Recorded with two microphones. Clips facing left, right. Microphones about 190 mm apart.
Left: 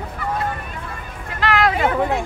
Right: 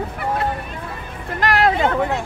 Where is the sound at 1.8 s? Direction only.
15° left (ahead or behind).